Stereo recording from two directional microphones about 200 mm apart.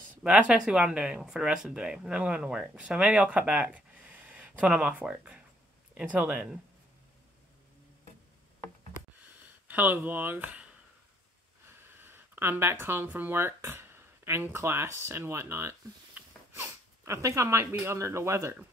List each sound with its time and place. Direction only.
0.2 s speech: 5° right (ahead or behind)
9.7 s speech: 10° right (ahead or behind)